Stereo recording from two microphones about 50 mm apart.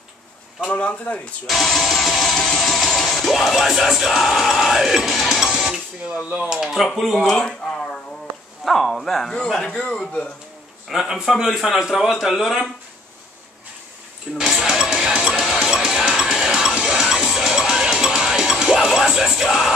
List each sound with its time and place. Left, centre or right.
0.7 s speech: left
1.5 s music: centre
6.3 s speech: centre
6.8 s speech: centre
9.8 s speech: centre
10.9 s a man's voice: centre
14.4 s music: centre